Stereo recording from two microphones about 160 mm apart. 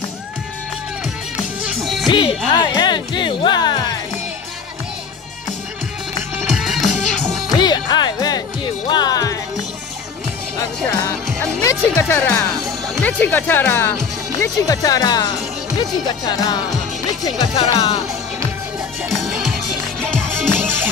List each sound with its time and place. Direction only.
2.0 s music: 30° left (ahead or behind)
6.5 s music: centre (ahead or behind)
7.5 s music: 25° left (ahead or behind)
11.6 s speech: 15° left (ahead or behind)
12.4 s speech: centre (ahead or behind); by 16.6 s 25° left (ahead or behind)
17.4 s speech: 35° left (ahead or behind)